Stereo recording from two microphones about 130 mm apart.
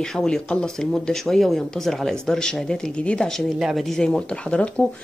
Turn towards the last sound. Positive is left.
turn(degrees=10)  # may be behind; listen again after turning